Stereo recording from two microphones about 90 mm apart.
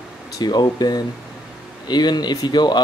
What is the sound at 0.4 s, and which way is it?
Speech, 50° left (ahead or behind).